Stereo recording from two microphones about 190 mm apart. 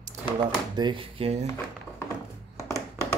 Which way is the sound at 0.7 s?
25° right (ahead or behind).